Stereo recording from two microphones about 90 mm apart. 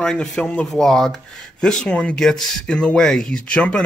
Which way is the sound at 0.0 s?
5° left (ahead or behind).